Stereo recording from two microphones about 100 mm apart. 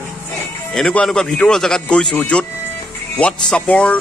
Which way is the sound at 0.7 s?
10° left (ahead or behind).